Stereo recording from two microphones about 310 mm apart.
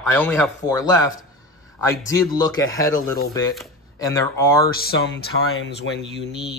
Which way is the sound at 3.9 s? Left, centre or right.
Centre.